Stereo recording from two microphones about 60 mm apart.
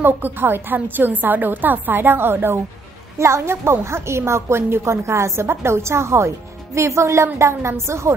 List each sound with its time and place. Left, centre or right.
0.0 s a woman's voice: right
3.2 s a woman's voice: right